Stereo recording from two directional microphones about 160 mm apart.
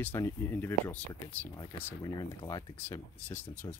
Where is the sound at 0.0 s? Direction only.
15° left (ahead or behind).